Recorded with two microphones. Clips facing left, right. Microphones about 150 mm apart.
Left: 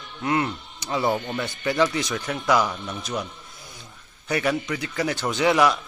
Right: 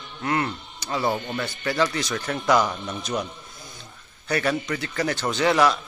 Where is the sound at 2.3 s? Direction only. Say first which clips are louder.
Right 1 dB; 10° left (ahead or behind).